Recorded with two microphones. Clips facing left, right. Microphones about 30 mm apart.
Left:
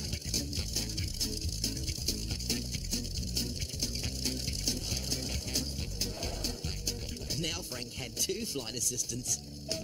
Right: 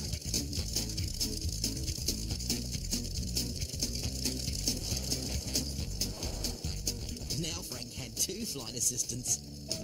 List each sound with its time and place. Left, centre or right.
0.3 s music: centre
8.2 s speech: left